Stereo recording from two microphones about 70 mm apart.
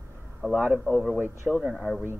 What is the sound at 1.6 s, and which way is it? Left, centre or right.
Speech, centre.